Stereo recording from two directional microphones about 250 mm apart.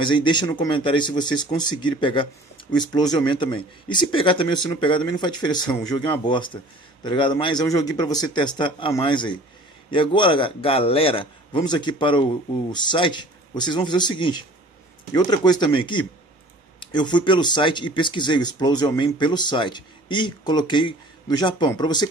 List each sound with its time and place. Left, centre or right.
0.0 s speech: centre